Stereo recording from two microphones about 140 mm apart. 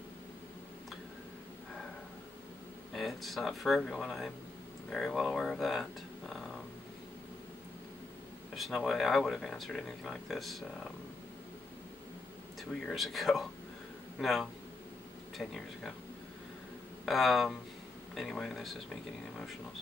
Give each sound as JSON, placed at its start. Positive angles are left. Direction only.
{"t": 2.9, "sound": "speech", "side_deg": 0}
{"t": 8.5, "sound": "speech", "side_deg": 0}
{"t": 12.9, "sound": "speech", "side_deg": 0}
{"t": 17.0, "sound": "speech", "side_deg": 0}